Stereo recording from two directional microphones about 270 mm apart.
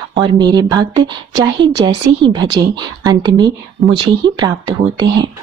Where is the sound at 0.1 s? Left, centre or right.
Centre.